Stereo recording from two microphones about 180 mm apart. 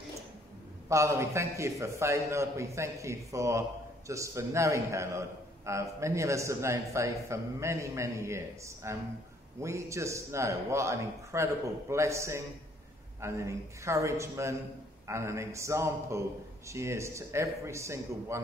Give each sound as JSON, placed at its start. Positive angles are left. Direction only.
{"t": 0.8, "sound": "a man's voice", "side_deg": -15}